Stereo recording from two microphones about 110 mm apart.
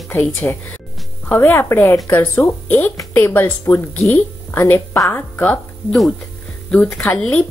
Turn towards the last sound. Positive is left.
turn(degrees=10)  # may be behind; listen again after turning